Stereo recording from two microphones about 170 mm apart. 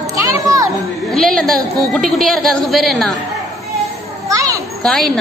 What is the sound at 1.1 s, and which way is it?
A woman's voice, 5° left (ahead or behind).